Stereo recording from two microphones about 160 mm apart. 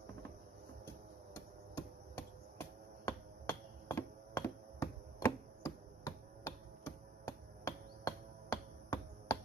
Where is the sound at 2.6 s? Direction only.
15° left (ahead or behind).